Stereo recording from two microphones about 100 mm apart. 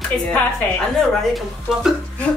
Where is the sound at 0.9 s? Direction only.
Centre (ahead or behind).